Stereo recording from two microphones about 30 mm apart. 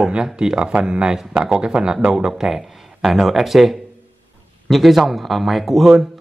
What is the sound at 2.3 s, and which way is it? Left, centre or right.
Speech, centre.